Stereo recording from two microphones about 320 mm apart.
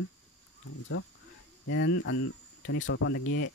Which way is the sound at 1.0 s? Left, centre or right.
Left.